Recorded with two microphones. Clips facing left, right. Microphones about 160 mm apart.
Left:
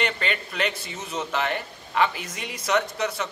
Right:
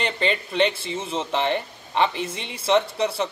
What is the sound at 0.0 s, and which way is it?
Speech, 30° right (ahead or behind).